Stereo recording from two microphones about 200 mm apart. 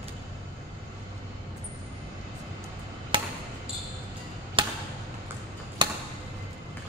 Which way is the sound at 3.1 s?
25° right (ahead or behind).